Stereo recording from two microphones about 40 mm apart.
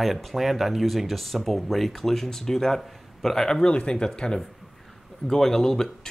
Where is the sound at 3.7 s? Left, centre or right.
Left.